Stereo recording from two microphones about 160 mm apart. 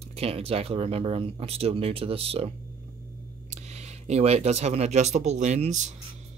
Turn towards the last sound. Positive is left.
turn(degrees=-45)  # may be behind; listen again after turning